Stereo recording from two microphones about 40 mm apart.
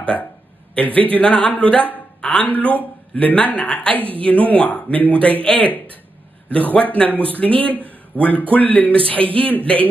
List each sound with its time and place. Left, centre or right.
0.0 s speech: left
7.8 s a sound: left
8.5 s speech: left